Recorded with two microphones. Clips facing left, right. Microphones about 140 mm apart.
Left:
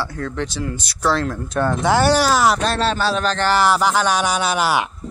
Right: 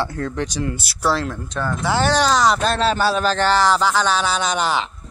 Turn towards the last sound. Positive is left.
turn(degrees=10)  # may be behind; listen again after turning